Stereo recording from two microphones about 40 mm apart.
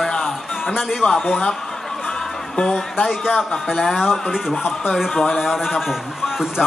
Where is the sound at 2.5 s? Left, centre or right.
Left.